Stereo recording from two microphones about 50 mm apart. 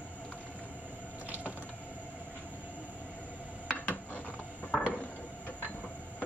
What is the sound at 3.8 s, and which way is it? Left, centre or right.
Gears, left.